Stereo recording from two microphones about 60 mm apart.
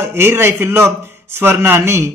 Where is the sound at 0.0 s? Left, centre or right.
Right.